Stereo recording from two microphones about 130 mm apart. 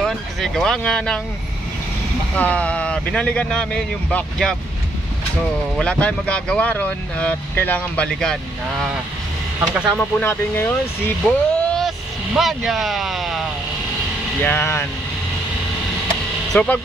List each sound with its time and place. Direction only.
0.0 s speech: 5° left (ahead or behind)
2.3 s speech: 10° left (ahead or behind)
5.8 s speech: 10° left (ahead or behind)
9.6 s speech: 10° right (ahead or behind)
10.2 s speech: 15° left (ahead or behind)
11.2 s a sound: 5° left (ahead or behind)
12.4 s speech: centre (ahead or behind)
14.4 s speech: 15° left (ahead or behind)
16.5 s speech: 10° left (ahead or behind)